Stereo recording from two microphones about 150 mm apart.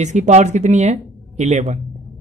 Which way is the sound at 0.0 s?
50° right (ahead or behind).